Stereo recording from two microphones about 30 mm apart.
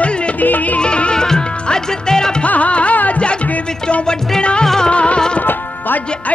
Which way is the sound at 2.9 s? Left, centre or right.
Left.